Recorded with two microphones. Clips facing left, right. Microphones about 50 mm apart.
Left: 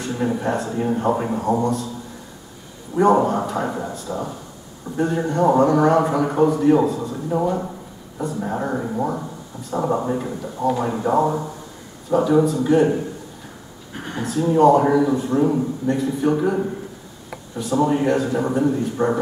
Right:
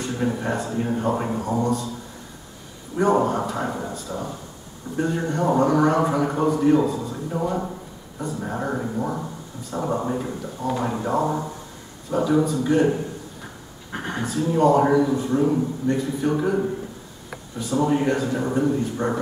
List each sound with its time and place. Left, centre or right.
0.0 s a man's voice: centre
3.0 s a man's voice: centre
14.1 s a man's voice: centre